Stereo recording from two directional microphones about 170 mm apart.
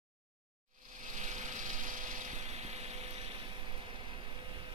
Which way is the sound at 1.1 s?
45° right (ahead or behind).